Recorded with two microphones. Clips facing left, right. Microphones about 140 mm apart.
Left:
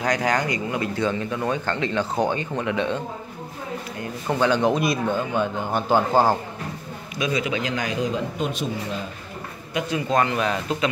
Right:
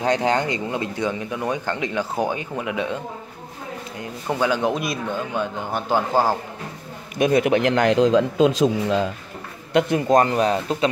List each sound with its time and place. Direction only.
0.0 s speech: 25° right (ahead or behind); by 3.0 s 10° right (ahead or behind)
4.3 s a man's voice: 10° right (ahead or behind)
7.2 s speech: 55° right (ahead or behind); by 9.1 s 90° right
9.8 s speech: 50° right (ahead or behind); by 10.9 s 35° right (ahead or behind)